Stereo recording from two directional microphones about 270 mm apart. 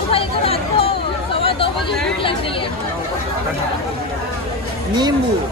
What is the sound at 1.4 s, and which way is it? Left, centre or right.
Chatter, centre.